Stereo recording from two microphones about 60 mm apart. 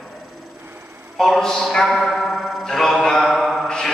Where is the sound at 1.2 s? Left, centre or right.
Centre.